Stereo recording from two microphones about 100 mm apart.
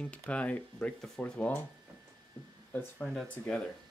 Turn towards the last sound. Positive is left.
turn(degrees=5)  # may be behind; listen again after turning